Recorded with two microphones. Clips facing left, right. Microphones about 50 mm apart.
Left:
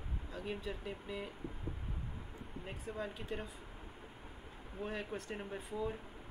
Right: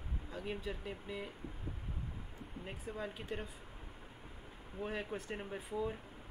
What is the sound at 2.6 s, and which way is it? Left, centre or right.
Speech, centre.